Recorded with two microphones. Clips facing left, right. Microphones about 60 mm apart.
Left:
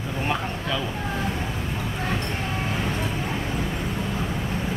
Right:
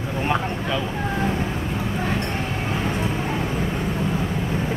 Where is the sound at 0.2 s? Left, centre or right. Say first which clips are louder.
Right 4 dB; centre.